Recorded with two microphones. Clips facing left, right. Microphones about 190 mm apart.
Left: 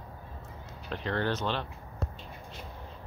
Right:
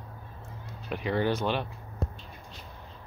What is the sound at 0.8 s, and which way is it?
Speech, 10° right (ahead or behind).